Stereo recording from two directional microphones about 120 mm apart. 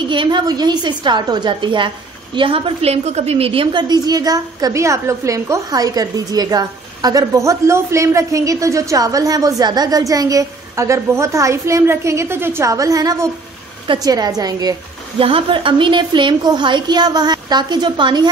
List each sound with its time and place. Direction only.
0.1 s a woman's voice: 40° right (ahead or behind)
3.9 s a woman's voice: 35° right (ahead or behind)
15.1 s a woman's voice: 50° right (ahead or behind)